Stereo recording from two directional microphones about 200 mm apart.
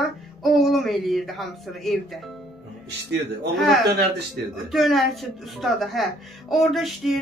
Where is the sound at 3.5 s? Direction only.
Centre (ahead or behind).